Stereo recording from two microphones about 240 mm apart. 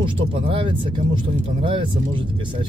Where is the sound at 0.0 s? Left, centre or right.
Right.